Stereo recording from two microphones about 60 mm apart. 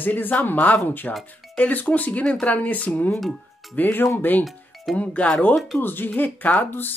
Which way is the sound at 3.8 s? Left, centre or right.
Left.